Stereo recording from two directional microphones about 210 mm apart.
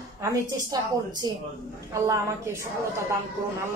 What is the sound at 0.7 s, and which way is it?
Speech, 20° right (ahead or behind).